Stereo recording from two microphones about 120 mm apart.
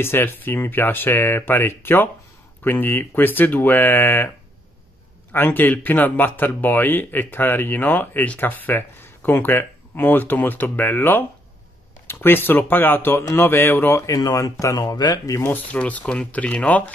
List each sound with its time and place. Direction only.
0.0 s speech: 20° left (ahead or behind)
5.3 s speech: 15° left (ahead or behind)
15.5 s speech: 10° left (ahead or behind)